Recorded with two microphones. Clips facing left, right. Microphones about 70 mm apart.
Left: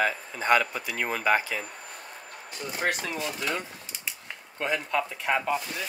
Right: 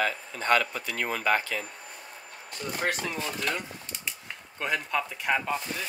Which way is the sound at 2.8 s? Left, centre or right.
Centre.